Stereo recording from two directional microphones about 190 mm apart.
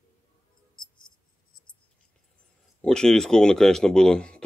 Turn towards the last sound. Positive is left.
turn(degrees=5)  # may be behind; listen again after turning